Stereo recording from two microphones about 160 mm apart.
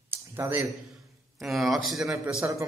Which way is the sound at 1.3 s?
Centre (ahead or behind).